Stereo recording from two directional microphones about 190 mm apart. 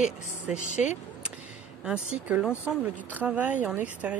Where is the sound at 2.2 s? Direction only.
10° right (ahead or behind).